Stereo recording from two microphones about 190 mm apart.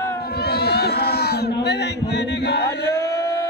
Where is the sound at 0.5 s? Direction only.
55° left (ahead or behind).